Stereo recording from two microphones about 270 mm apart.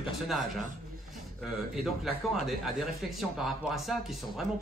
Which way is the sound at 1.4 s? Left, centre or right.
Centre.